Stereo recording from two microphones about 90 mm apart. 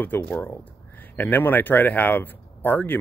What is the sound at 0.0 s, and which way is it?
Speech, 25° left (ahead or behind).